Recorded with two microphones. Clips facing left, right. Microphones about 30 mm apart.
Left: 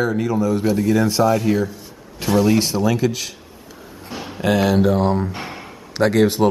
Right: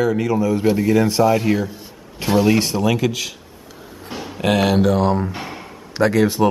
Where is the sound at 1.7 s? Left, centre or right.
Right.